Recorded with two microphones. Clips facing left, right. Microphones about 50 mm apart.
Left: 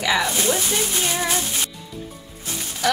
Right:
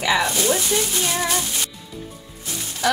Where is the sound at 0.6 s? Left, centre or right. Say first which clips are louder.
Right 1 dB; centre.